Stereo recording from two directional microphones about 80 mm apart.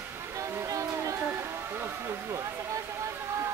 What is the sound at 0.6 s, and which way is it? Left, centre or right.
Music, right.